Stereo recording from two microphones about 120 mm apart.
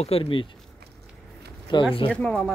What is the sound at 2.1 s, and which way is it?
Speech, 5° left (ahead or behind).